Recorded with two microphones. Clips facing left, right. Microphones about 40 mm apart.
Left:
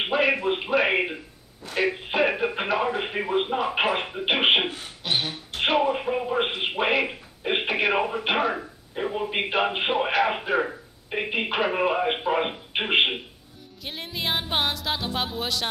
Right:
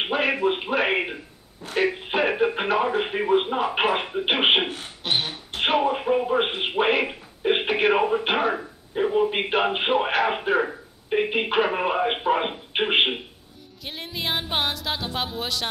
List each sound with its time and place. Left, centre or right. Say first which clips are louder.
0.0 s speech: even; centre
4.6 s speech: even; right
5.1 s speech: right 1 dB; centre